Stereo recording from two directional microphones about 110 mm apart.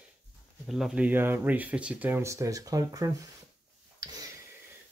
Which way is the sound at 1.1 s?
20° right (ahead or behind).